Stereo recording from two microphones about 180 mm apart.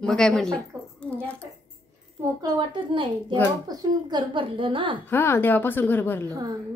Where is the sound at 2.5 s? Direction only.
25° right (ahead or behind).